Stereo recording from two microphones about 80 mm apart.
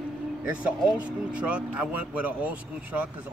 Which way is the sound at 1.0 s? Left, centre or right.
Centre.